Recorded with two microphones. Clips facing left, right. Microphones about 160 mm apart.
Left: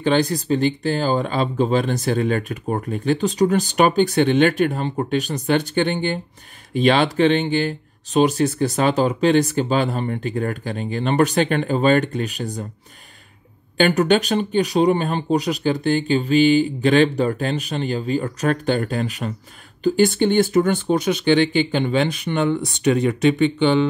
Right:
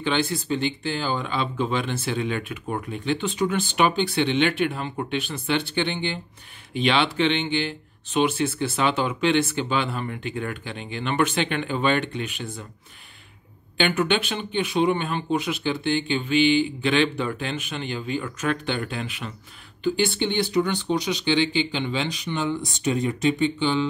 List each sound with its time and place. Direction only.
0.0 s speech: 40° left (ahead or behind)
13.7 s speech: 40° left (ahead or behind); by 23.9 s 65° left (ahead or behind)